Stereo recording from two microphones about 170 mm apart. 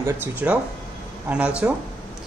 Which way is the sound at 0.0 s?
10° right (ahead or behind).